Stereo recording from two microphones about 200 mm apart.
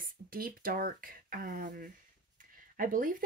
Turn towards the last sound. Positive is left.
turn(degrees=-45)  # may be behind; listen again after turning